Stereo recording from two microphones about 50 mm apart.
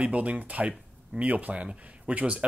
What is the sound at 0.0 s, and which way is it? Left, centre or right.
Speech, right.